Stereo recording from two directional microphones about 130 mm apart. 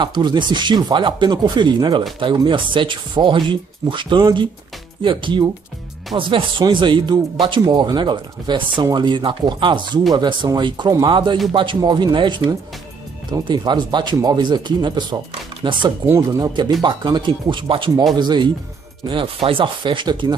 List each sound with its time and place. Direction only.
0.0 s speech: 35° right (ahead or behind)